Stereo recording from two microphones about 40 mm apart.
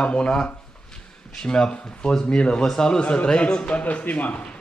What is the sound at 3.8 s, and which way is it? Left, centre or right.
Speech, left.